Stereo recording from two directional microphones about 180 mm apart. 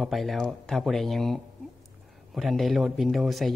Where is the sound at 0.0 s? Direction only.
Centre (ahead or behind).